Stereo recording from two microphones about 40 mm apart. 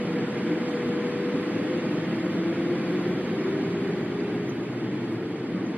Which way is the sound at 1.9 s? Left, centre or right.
Right.